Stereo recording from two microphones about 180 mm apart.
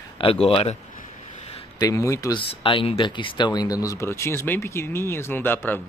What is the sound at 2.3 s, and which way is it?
Speech, 30° left (ahead or behind).